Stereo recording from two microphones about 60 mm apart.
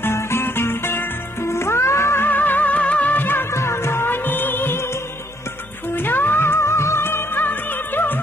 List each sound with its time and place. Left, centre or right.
0.0 s music: left
2.2 s music: left
3.2 s music of bollywood: left
3.5 s music: left
5.9 s music: left